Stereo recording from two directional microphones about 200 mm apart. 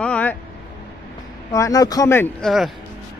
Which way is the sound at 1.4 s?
15° left (ahead or behind).